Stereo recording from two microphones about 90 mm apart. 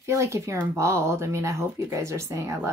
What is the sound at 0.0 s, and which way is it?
Speech, 35° right (ahead or behind).